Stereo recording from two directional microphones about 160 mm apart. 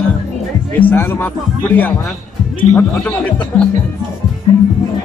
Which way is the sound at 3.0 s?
10° left (ahead or behind).